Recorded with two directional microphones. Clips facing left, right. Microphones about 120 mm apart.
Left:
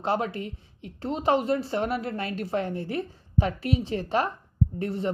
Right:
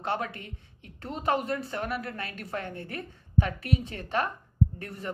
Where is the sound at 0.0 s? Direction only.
30° left (ahead or behind).